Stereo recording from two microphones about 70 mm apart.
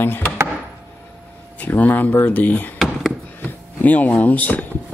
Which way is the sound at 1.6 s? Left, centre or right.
Left.